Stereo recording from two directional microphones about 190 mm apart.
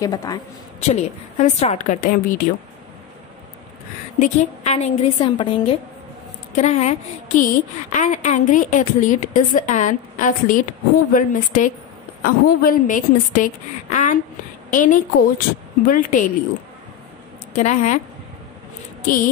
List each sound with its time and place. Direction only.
0.0 s a woman's voice: 20° left (ahead or behind)
0.7 s a woman's voice: 35° left (ahead or behind)
4.2 s a woman's voice: 40° left (ahead or behind)
17.6 s a woman's voice: 40° left (ahead or behind)